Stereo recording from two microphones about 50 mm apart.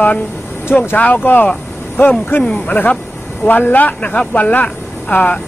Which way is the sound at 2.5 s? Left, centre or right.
Left.